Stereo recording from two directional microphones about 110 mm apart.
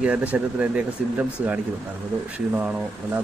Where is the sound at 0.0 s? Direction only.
10° right (ahead or behind).